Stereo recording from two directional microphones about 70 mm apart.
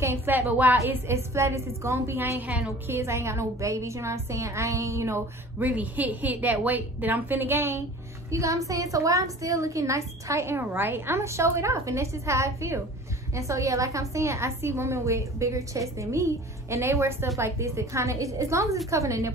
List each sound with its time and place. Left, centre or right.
0.0 s a woman's voice: right
0.8 s a woman's voice: right
2.1 s a woman's voice: right
5.6 s a woman's voice: right
8.3 s a woman's voice: right